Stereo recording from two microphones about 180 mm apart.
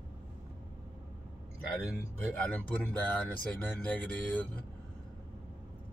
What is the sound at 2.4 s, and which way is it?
Speech, 5° left (ahead or behind).